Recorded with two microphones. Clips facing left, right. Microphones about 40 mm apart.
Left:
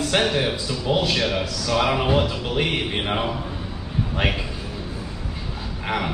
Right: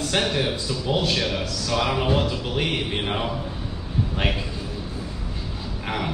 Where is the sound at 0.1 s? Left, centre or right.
Centre.